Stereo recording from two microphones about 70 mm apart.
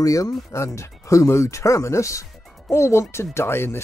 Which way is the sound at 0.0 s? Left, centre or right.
Left.